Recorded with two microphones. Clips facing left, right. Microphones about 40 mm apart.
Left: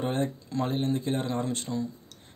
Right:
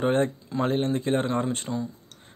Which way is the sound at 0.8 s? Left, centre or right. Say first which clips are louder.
Right 4 dB; right.